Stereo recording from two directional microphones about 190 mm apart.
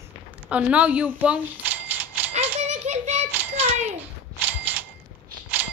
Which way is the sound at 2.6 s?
35° right (ahead or behind).